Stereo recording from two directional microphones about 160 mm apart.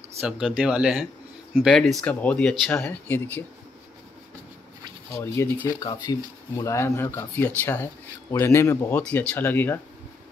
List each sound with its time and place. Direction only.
0.2 s speech: 5° right (ahead or behind)
5.2 s speech: 15° left (ahead or behind)